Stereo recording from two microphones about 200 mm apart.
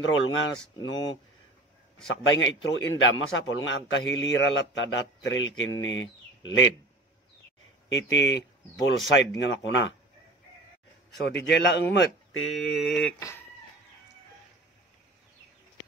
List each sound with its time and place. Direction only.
0.0 s speech: 75° left (ahead or behind)
2.3 s speech: 70° left (ahead or behind)
7.9 s speech: 65° left (ahead or behind)
11.2 s speech: 60° left (ahead or behind)
12.4 s speech: centre (ahead or behind)